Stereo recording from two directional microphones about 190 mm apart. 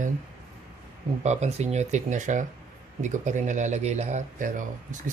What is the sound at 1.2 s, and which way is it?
Speech, 35° right (ahead or behind).